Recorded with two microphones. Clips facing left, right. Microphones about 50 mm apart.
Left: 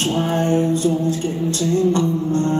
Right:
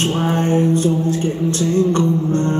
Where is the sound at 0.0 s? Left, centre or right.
Right.